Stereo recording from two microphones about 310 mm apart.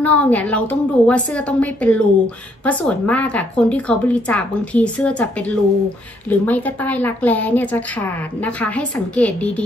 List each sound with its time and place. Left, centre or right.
0.0 s a woman's voice: centre